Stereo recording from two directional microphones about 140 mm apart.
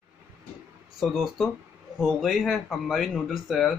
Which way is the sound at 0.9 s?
Centre (ahead or behind).